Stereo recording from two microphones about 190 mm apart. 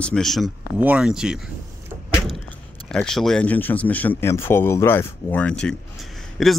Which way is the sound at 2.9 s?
5° left (ahead or behind).